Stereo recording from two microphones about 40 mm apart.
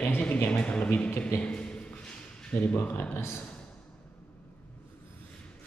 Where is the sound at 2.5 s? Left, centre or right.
Left.